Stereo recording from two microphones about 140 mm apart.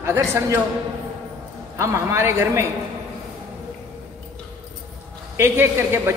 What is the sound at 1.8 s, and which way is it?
Speech, 20° right (ahead or behind).